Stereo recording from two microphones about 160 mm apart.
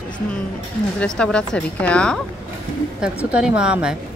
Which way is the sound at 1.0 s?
5° left (ahead or behind).